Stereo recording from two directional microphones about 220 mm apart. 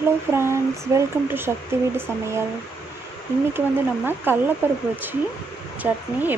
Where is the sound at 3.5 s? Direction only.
10° right (ahead or behind).